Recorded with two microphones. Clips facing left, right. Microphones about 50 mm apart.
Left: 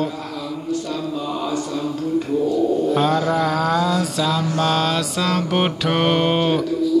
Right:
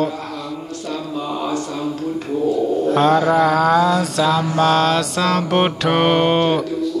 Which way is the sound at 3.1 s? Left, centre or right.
Centre.